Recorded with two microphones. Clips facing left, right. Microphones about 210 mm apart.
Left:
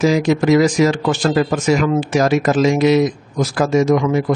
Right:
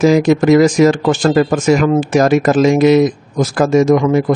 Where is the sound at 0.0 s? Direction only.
50° right (ahead or behind).